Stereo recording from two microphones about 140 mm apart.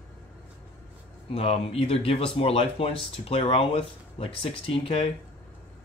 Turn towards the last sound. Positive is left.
turn(degrees=45)  # may be behind; listen again after turning